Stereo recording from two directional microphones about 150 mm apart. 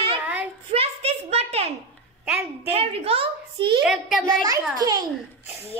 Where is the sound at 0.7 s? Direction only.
45° right (ahead or behind).